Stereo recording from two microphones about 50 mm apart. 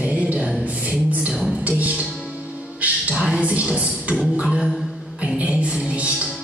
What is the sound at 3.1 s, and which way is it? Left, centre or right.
Music, centre.